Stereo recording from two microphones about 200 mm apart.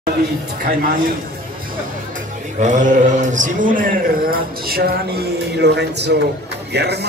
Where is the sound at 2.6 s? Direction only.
40° right (ahead or behind).